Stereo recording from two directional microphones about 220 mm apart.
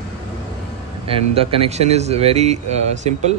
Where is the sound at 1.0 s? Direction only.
25° right (ahead or behind).